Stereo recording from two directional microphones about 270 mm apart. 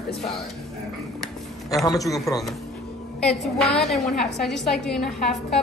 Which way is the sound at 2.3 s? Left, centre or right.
Centre.